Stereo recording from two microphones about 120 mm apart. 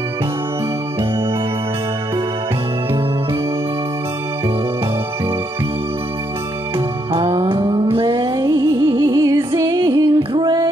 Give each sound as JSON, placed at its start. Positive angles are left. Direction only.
{"t": 7.2, "sound": "music", "side_deg": -35}
{"t": 7.5, "sound": "a sound", "side_deg": -35}
{"t": 7.9, "sound": "music", "side_deg": -45}